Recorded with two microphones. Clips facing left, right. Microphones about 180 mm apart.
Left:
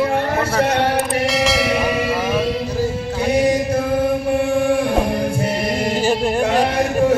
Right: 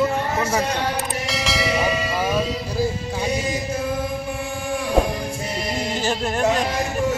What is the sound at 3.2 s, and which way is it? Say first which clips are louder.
Chant: left 10 dB; 60° left (ahead or behind).